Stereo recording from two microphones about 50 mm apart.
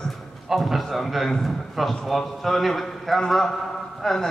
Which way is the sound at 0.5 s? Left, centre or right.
Centre.